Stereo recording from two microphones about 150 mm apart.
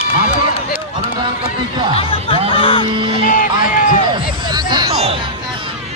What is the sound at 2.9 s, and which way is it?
Music, 35° right (ahead or behind).